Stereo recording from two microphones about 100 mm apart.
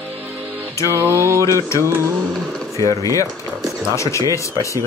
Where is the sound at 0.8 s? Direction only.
25° right (ahead or behind).